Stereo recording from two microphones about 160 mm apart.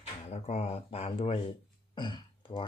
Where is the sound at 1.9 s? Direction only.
30° left (ahead or behind).